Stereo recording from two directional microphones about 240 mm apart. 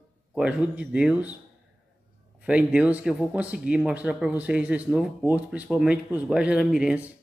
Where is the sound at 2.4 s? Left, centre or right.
Centre.